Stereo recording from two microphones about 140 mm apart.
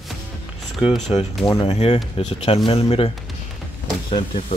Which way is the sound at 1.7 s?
45° left (ahead or behind).